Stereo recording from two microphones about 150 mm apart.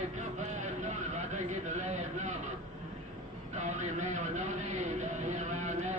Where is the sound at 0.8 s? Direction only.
50° right (ahead or behind).